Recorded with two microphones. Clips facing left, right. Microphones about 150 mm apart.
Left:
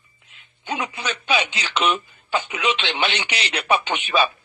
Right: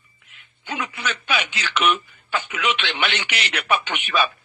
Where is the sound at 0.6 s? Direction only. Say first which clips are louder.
Left 1 dB; 20° left (ahead or behind).